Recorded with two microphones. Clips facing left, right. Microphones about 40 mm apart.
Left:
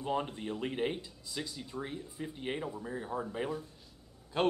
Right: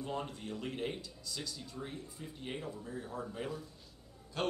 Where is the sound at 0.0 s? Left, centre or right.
Left.